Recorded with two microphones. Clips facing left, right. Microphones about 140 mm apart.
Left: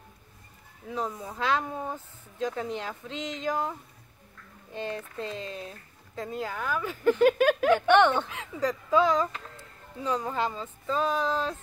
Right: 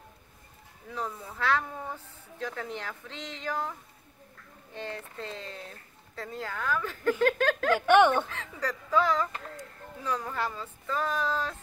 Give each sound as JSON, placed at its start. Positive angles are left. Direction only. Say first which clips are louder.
{"t": 0.8, "sound": "speech", "louder": "left 4 dB", "side_deg": 15}
{"t": 4.7, "sound": "speech", "louder": "left 4 dB", "side_deg": 15}
{"t": 7.8, "sound": "speech", "louder": "right 2 dB", "side_deg": -10}
{"t": 8.3, "sound": "speech", "louder": "left 5 dB", "side_deg": 15}